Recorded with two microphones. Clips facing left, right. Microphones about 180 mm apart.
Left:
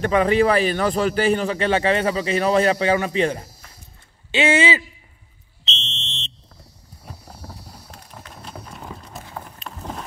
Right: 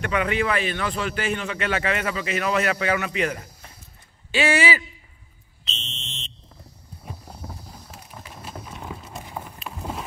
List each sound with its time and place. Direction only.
0.0 s a man's voice: 35° left (ahead or behind)
5.7 s fire alarm: 25° left (ahead or behind)
7.4 s a sound: 5° left (ahead or behind)
7.9 s clip-clop: 5° right (ahead or behind)
9.2 s horse: 10° right (ahead or behind)